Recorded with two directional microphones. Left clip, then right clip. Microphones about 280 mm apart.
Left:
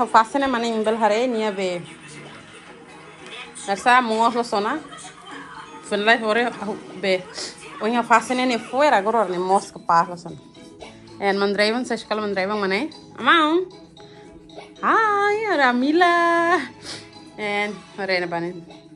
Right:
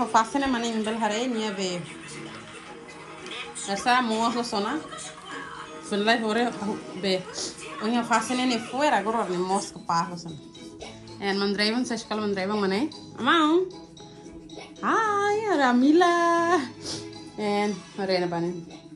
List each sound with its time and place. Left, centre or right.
0.0 s a woman's voice: centre
3.6 s a woman's voice: centre
14.8 s a woman's voice: centre
16.8 s music: centre
17.9 s a woman's voice: centre